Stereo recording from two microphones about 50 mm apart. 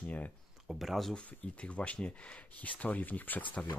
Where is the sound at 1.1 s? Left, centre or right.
Left.